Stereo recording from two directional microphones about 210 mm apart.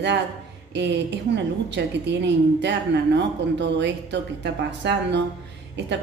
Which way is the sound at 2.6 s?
55° right (ahead or behind).